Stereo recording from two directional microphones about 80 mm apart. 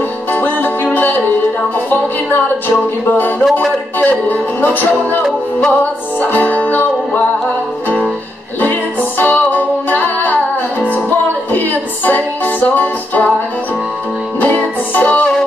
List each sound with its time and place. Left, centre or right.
0.3 s music: left
3.1 s music: left
6.2 s music: left
9.2 s music: left
11.5 s music: left
14.4 s music: left